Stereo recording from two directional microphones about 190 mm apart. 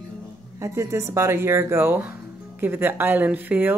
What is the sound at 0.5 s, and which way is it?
A woman's voice, 15° right (ahead or behind).